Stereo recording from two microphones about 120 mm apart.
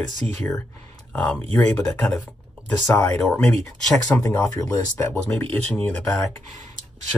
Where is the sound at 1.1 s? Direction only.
5° left (ahead or behind).